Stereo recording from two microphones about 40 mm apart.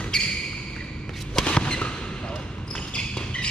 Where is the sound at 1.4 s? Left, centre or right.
Left.